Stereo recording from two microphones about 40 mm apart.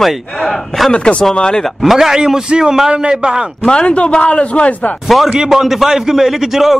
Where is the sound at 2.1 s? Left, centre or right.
Centre.